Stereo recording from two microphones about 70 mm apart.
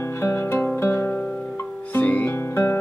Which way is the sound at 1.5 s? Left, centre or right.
Left.